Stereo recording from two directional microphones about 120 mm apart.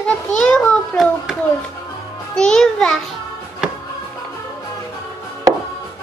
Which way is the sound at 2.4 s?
5° left (ahead or behind).